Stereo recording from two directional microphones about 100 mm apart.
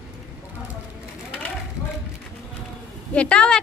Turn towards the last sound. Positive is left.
turn(degrees=10)  # may be behind; listen again after turning